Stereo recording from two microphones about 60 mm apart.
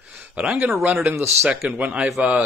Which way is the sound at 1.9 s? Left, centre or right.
Centre.